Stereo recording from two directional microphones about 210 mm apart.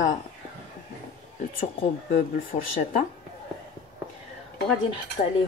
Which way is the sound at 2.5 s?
35° left (ahead or behind).